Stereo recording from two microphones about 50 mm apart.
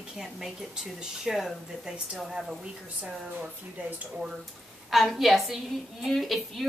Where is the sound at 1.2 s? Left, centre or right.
Centre.